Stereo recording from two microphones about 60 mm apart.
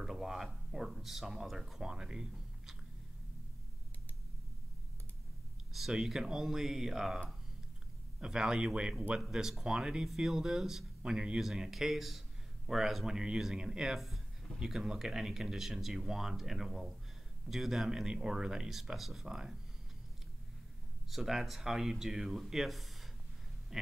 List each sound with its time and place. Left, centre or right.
0.0 s speech: centre
5.7 s speech: centre
8.2 s speech: centre
21.1 s speech: centre